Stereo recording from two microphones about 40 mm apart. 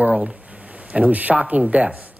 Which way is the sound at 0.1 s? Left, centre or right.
Right.